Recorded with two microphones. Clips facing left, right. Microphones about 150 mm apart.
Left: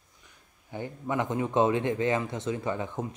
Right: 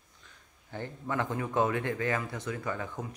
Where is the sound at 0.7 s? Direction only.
15° left (ahead or behind).